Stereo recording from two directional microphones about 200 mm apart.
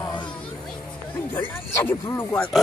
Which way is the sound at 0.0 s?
20° left (ahead or behind).